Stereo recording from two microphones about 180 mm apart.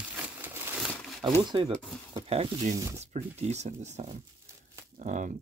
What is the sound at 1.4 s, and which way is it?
Speech, 25° right (ahead or behind).